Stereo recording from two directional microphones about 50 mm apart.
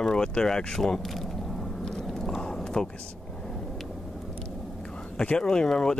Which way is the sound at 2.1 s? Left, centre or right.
Centre.